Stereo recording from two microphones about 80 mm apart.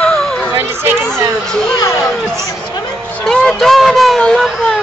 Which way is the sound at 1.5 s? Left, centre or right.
Centre.